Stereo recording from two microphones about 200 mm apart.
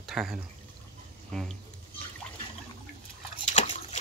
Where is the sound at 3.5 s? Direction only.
35° left (ahead or behind).